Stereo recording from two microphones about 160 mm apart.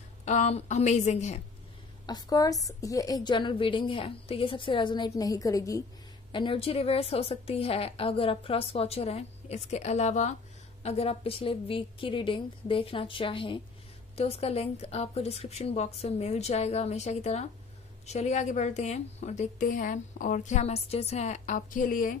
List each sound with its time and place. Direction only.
0.2 s a woman's voice: 45° left (ahead or behind)
2.0 s a woman's voice: 25° left (ahead or behind)
6.3 s a woman's voice: 30° left (ahead or behind); by 22.1 s 60° left (ahead or behind)